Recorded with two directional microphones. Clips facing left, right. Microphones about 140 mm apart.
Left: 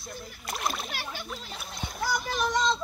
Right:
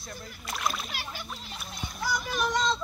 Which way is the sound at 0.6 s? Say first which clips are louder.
Even; 35° left (ahead or behind).